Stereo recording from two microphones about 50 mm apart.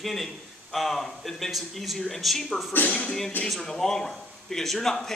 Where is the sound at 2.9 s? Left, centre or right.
Centre.